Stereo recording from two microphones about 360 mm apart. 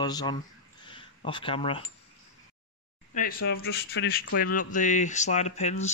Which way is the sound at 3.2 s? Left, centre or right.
Left.